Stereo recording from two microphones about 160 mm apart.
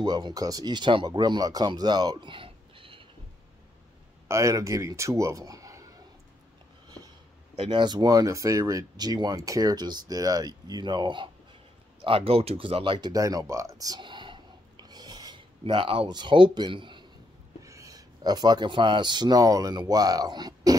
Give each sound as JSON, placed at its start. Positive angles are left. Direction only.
{"t": 0.0, "sound": "speech", "side_deg": -25}
{"t": 4.3, "sound": "speech", "side_deg": -20}
{"t": 7.5, "sound": "speech", "side_deg": -40}
{"t": 7.8, "sound": "speech", "side_deg": -25}